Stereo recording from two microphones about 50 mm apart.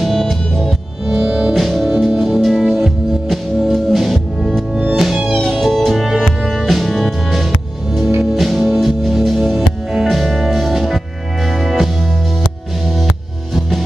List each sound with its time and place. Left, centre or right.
0.0 s music: centre
1.0 s music: centre
1.5 s music: centre